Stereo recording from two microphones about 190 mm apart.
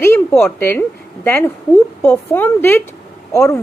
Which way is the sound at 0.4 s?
10° left (ahead or behind).